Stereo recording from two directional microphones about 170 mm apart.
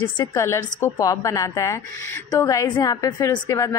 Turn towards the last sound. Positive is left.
turn(degrees=20)  # may be behind; listen again after turning